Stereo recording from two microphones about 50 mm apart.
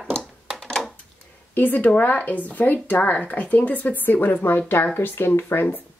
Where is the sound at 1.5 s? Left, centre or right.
Left.